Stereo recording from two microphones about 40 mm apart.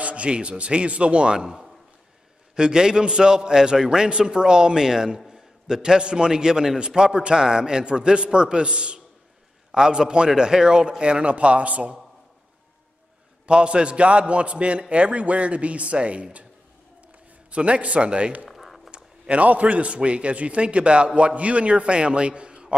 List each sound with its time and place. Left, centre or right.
0.0 s a man's voice: right
13.5 s a man's voice: right
17.5 s a man's voice: right
18.5 s a sound: centre
18.9 s a man's voice: right